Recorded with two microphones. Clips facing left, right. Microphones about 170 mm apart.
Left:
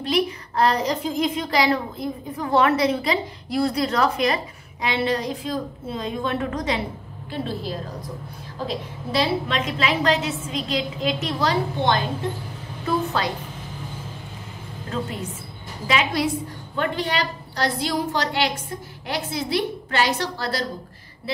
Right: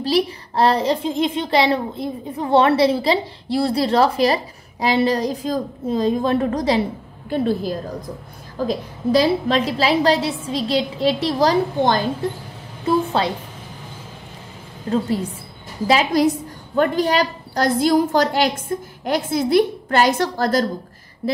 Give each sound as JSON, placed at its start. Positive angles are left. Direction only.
{"t": 0.0, "sound": "a child's voice", "side_deg": -30}
{"t": 7.2, "sound": "a woman's voice", "side_deg": -50}
{"t": 12.8, "sound": "a sound", "side_deg": -30}
{"t": 15.9, "sound": "a child's voice", "side_deg": -40}